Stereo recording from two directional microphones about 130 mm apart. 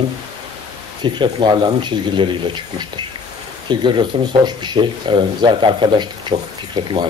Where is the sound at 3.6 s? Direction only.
35° right (ahead or behind).